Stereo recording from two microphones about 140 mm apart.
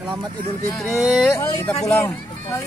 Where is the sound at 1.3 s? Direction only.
20° left (ahead or behind).